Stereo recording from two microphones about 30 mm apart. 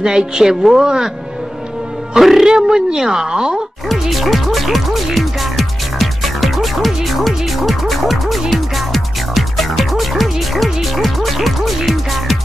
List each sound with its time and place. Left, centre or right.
0.0 s speech: right
2.1 s speech: centre
2.4 s speech: right
4.1 s music: centre
7.1 s speech: centre